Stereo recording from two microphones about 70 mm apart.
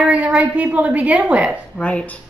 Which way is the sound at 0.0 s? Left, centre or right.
Centre.